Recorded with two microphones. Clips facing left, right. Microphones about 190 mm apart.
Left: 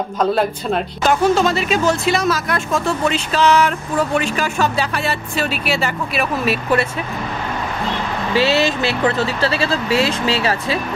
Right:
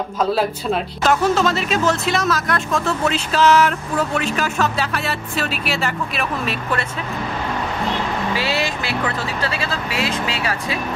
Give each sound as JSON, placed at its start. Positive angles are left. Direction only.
{"t": 0.2, "sound": "speech", "side_deg": -5}
{"t": 8.4, "sound": "speech", "side_deg": 25}